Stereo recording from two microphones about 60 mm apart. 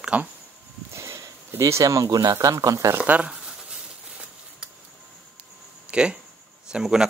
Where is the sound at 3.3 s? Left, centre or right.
Centre.